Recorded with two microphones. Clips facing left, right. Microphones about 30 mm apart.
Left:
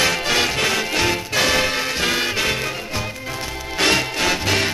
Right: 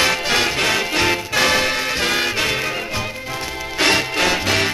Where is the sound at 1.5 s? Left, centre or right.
Centre.